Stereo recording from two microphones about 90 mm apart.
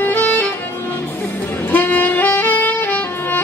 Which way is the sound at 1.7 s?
20° left (ahead or behind).